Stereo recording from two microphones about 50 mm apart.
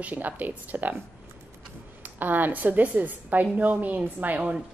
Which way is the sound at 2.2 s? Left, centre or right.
Right.